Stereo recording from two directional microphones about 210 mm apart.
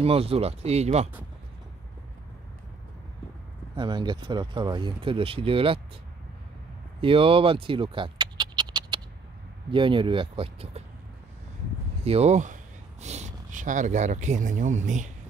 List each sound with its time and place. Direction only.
0.0 s speech: 30° right (ahead or behind)
3.7 s speech: 20° right (ahead or behind)
7.0 s scratch: 25° right (ahead or behind)
9.7 s speech: 25° right (ahead or behind)
12.0 s speech: 30° right (ahead or behind)